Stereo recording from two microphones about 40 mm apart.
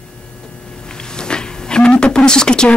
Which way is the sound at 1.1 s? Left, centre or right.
Centre.